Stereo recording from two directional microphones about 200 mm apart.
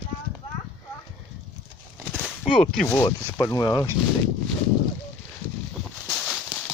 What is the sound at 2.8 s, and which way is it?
Speech, 10° left (ahead or behind).